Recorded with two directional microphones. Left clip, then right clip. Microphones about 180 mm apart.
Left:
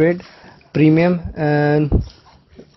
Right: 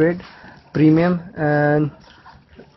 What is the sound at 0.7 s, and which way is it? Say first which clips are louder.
Speech: left 1 dB; 15° left (ahead or behind).